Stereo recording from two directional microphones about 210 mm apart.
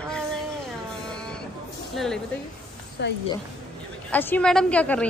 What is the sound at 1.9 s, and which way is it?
Speech, centre (ahead or behind).